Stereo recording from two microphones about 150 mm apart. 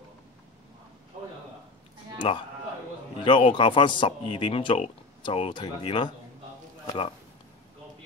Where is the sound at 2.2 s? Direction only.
40° left (ahead or behind).